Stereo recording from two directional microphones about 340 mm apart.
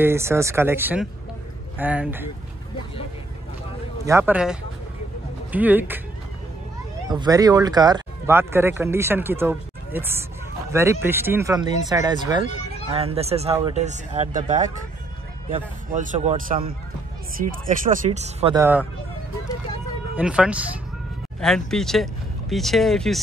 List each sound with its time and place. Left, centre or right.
0.0 s speech: centre
4.0 s speech: centre
7.1 s a man's voice: centre
20.2 s speech: centre